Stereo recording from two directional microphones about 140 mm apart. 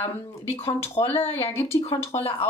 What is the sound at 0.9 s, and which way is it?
Speech, 15° left (ahead or behind).